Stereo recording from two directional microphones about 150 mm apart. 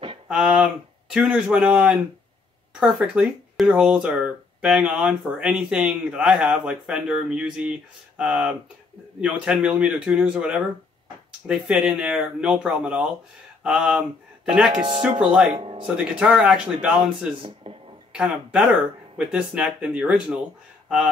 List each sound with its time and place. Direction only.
0.3 s a sound: 5° right (ahead or behind)
1.1 s speech: 5° right (ahead or behind)
15.5 s speech: 35° right (ahead or behind)
16.0 s speech: 5° right (ahead or behind)
17.6 s a sound: 35° right (ahead or behind)
18.1 s speech: 5° right (ahead or behind)